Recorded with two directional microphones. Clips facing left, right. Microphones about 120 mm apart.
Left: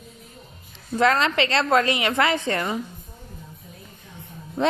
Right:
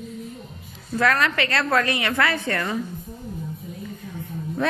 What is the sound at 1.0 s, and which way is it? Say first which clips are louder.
A woman's voice: left 2 dB; 25° left (ahead or behind).